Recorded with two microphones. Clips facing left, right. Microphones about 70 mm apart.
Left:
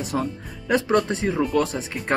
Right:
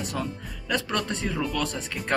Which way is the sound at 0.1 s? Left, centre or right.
Left.